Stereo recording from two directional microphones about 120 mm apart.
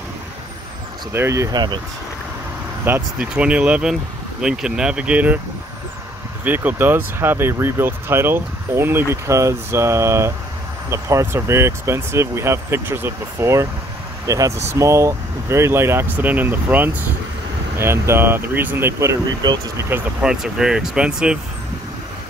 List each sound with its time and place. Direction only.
1.1 s speech: 25° right (ahead or behind)
2.8 s speech: 15° right (ahead or behind)
6.4 s speech: 15° right (ahead or behind)
19.4 s speech: 35° right (ahead or behind)
20.2 s speech: 5° right (ahead or behind)